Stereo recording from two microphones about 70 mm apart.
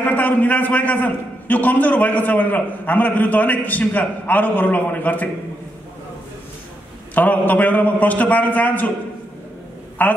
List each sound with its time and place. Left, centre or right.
0.0 s a man's voice: left
7.2 s a man's voice: left
10.0 s a man's voice: left